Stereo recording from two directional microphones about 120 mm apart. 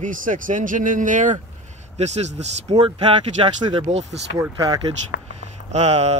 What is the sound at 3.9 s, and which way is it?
Speech, 75° right (ahead or behind).